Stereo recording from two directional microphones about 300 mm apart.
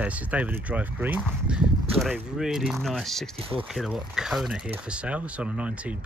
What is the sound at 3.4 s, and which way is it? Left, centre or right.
Speech, centre.